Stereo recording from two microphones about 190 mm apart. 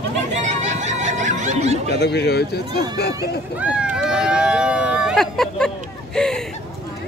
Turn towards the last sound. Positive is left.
turn(degrees=5)  # may be behind; listen again after turning